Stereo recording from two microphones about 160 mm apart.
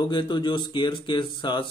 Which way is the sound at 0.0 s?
30° left (ahead or behind).